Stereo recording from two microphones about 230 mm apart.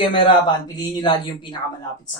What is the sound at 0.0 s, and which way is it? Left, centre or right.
Speech, left.